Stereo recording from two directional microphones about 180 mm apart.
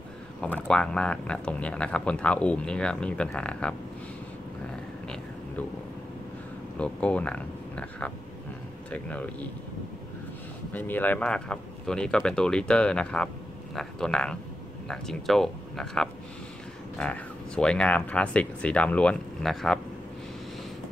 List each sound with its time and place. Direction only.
0.4 s speech: 5° left (ahead or behind)
5.0 s a sound: 5° left (ahead or behind)
6.8 s speech: 5° left (ahead or behind)
10.7 s speech: 10° left (ahead or behind)